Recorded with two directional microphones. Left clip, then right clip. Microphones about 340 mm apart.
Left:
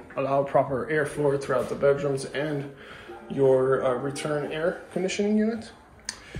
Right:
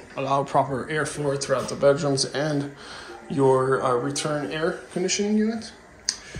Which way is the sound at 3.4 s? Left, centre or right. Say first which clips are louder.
Right 1 dB; centre.